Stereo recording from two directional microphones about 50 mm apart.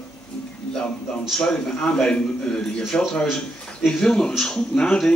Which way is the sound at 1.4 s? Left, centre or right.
Centre.